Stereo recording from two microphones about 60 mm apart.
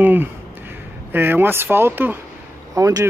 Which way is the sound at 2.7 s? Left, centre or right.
Right.